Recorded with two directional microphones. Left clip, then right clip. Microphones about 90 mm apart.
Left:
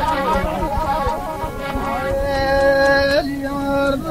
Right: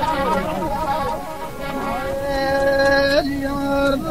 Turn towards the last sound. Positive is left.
turn(degrees=-40)  # may be behind; listen again after turning